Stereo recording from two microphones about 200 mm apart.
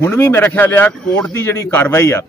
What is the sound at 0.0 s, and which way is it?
Speech, 10° left (ahead or behind).